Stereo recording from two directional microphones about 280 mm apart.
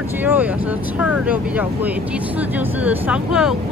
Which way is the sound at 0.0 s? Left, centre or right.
Centre.